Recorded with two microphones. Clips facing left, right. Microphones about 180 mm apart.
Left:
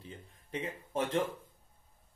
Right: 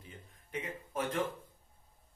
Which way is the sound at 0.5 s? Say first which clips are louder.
Left 2 dB; 30° left (ahead or behind).